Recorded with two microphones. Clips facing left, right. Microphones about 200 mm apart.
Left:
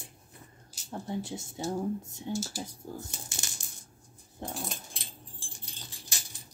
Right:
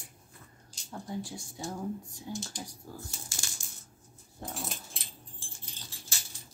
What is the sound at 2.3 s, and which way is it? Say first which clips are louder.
Speech: left 5 dB; 5° left (ahead or behind).